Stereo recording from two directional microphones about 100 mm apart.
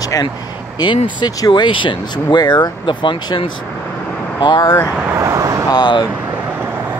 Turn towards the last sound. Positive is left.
turn(degrees=45)  # may be behind; listen again after turning